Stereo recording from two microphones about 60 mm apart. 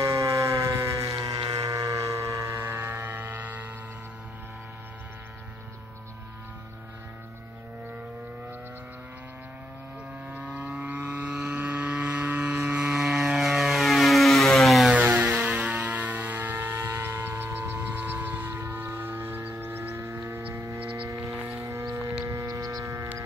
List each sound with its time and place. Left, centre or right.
0.0 s civil defense siren: right
2.6 s music: right
11.1 s vehicle: centre
13.4 s a sound: centre
14.9 s music: right
16.7 s vehicle: right
18.5 s a sound: right
19.6 s music: right
20.0 s a sound: right
20.5 s hum: right
21.5 s a sound: right
22.2 s hum: right